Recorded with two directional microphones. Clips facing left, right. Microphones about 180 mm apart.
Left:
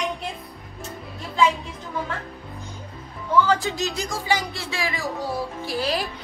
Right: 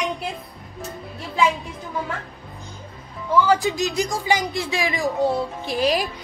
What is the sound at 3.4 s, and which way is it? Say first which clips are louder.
Speech: right 3 dB; 15° right (ahead or behind).